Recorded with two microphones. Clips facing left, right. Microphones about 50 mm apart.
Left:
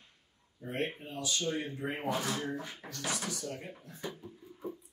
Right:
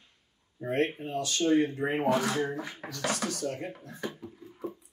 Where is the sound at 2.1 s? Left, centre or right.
Right.